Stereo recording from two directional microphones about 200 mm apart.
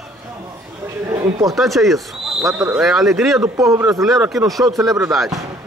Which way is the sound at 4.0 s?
Centre (ahead or behind).